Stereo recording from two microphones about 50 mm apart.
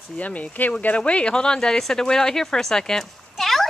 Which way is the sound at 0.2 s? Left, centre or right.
Left.